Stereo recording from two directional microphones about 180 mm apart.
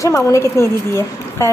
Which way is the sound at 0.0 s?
15° left (ahead or behind).